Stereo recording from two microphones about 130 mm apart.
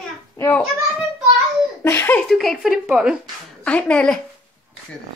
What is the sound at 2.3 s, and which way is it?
Speech, centre (ahead or behind).